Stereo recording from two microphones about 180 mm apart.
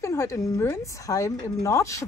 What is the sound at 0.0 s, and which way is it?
A woman's voice, 15° left (ahead or behind).